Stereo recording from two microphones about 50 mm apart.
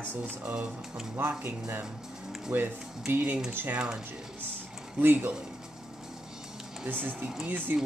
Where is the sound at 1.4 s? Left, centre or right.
Right.